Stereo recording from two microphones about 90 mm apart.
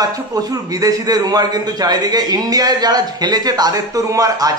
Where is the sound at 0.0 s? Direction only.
45° right (ahead or behind).